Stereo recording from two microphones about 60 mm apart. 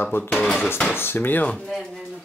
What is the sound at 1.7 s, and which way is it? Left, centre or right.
Speech, centre.